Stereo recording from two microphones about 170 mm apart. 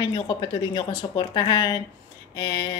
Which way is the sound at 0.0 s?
25° left (ahead or behind).